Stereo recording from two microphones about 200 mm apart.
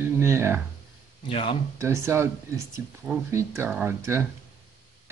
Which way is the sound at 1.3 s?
25° left (ahead or behind).